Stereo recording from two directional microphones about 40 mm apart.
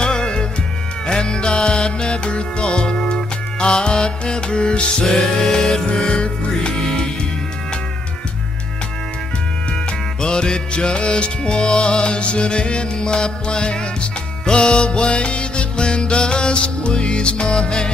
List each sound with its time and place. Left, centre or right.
0.0 s music: left
6.8 s music: centre
10.2 s music: left